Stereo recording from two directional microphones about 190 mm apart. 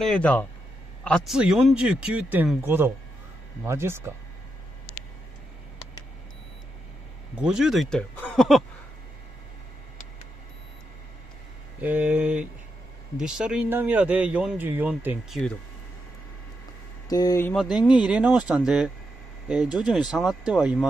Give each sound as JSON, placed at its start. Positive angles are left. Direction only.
{"t": 0.0, "sound": "speech", "side_deg": 5}
{"t": 7.3, "sound": "speech", "side_deg": -5}
{"t": 11.8, "sound": "speech", "side_deg": -10}
{"t": 17.1, "sound": "speech", "side_deg": 20}
{"t": 18.0, "sound": "speech", "side_deg": -5}